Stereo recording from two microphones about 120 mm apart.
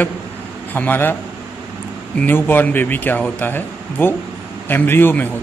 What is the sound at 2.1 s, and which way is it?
A man's voice, 15° left (ahead or behind).